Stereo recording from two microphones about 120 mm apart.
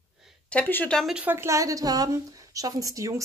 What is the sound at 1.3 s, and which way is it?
A woman's voice, 20° right (ahead or behind).